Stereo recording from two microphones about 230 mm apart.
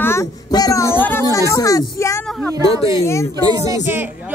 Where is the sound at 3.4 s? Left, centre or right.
Centre.